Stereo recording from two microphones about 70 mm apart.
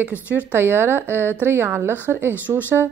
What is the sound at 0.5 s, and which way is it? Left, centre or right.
A woman's voice, right.